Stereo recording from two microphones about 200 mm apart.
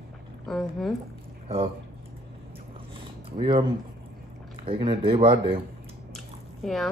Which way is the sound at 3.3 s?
25° right (ahead or behind).